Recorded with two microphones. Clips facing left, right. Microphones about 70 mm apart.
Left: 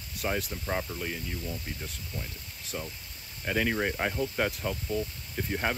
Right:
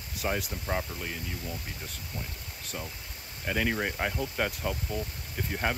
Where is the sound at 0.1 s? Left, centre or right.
Centre.